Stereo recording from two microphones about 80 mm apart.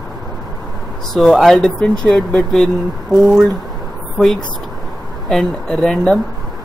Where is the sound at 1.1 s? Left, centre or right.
Centre.